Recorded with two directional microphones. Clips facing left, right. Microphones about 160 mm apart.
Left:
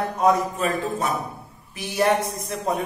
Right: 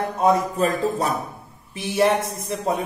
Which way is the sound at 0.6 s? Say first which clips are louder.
Right 3 dB; 35° right (ahead or behind).